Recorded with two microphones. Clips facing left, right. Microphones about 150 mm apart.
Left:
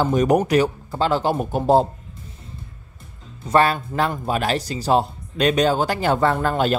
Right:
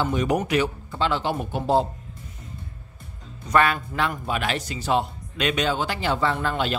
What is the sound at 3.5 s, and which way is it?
Speech, 35° left (ahead or behind).